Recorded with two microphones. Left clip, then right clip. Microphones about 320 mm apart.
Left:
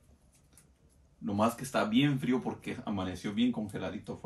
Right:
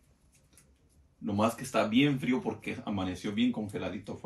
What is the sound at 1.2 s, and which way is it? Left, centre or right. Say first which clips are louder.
Speech: right 1 dB; centre.